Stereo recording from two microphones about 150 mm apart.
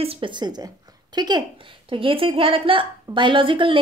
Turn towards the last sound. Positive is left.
turn(degrees=-35)  # may be behind; listen again after turning